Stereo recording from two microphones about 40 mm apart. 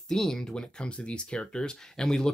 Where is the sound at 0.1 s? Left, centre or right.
Centre.